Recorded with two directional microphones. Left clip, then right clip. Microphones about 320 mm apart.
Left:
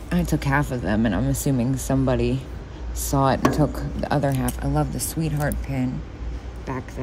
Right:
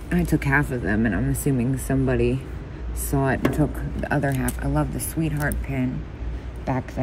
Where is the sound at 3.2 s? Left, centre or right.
Centre.